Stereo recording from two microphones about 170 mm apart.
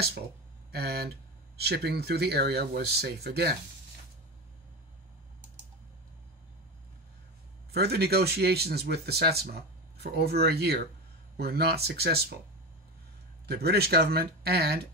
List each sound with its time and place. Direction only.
0.7 s speech: 70° right (ahead or behind)
7.7 s speech: 70° right (ahead or behind)
13.5 s speech: 70° right (ahead or behind)